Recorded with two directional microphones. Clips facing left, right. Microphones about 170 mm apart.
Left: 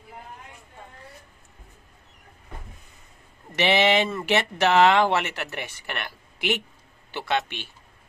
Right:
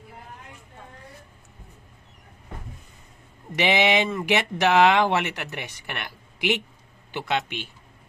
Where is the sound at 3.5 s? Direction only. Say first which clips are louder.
Left 1 dB; 15° right (ahead or behind).